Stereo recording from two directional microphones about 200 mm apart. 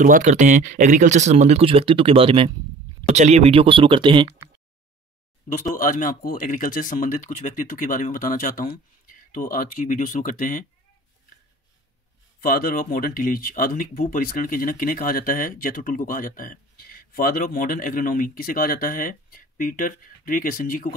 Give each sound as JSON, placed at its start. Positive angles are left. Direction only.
{"t": 0.0, "sound": "speech", "side_deg": -40}
{"t": 5.8, "sound": "speech", "side_deg": 45}
{"t": 12.4, "sound": "speech", "side_deg": 50}